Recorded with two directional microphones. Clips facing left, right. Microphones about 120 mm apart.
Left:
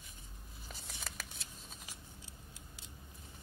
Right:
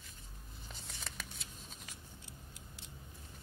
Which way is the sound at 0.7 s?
5° left (ahead or behind).